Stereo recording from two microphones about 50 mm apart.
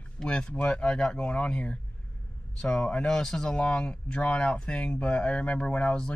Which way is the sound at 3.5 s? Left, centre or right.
Left.